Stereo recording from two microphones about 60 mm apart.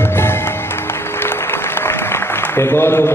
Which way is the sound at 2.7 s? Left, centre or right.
Left.